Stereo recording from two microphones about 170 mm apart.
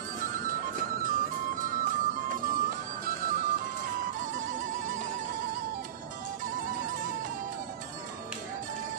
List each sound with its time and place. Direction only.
0.3 s music: 55° right (ahead or behind)
6.4 s music: 50° right (ahead or behind)